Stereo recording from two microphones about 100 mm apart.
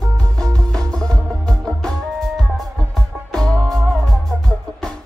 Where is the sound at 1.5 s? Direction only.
5° left (ahead or behind).